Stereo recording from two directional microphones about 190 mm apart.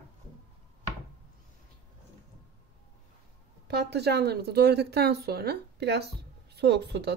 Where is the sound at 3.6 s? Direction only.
60° right (ahead or behind).